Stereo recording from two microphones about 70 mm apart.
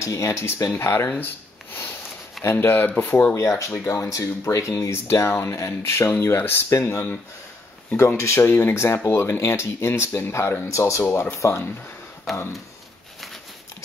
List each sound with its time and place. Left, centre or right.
0.0 s speech: left
1.2 s rub: left
2.5 s speech: left
3.3 s speech: left
11.1 s speech: left
12.3 s speech: centre